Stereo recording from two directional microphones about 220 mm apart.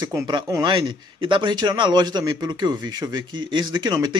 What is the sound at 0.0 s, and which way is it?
Speech, 20° right (ahead or behind).